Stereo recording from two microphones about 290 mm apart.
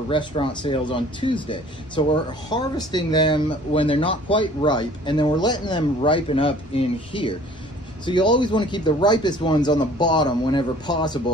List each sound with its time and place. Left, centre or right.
0.1 s speech: centre